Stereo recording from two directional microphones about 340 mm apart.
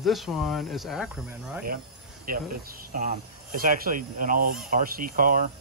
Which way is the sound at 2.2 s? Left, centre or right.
Right.